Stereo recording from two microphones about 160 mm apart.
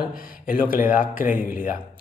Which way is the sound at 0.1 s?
60° left (ahead or behind).